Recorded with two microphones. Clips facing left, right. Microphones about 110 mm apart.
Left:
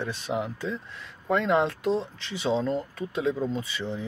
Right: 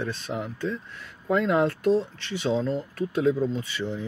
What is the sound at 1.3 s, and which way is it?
Speech, 5° right (ahead or behind).